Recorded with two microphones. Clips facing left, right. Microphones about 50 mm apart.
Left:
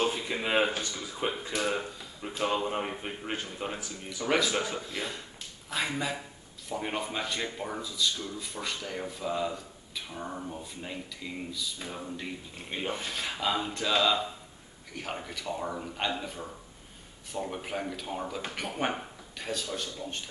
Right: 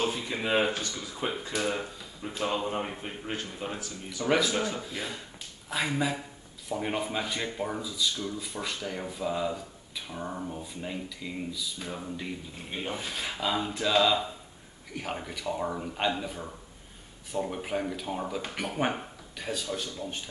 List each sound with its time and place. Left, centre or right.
0.0 s a sound: centre
0.8 s speech: centre
4.7 s speech: centre
12.9 s speech: centre